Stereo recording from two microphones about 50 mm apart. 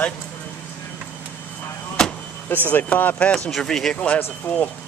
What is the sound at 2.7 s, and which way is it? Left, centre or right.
Speech, left.